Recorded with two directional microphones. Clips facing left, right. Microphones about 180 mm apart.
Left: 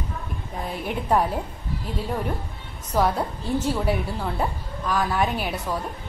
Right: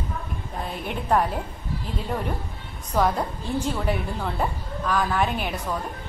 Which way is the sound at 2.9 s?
10° left (ahead or behind).